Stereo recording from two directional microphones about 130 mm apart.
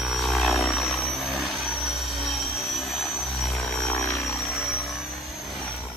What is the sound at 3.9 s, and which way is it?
Music, 20° left (ahead or behind).